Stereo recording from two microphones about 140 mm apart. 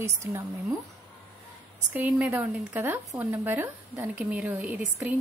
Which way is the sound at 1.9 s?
10° right (ahead or behind).